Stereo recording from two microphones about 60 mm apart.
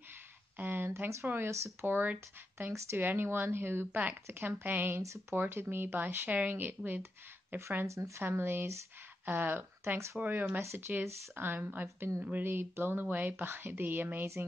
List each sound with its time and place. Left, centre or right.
0.6 s a sound: right
1.2 s speech: right
1.5 s speech: right
1.9 s speech: right
6.0 s speech: right
7.8 s speech: right
8.2 s speech: right
10.2 s speech: centre
10.6 s speech: right
10.9 s speech: right
13.0 s speech: right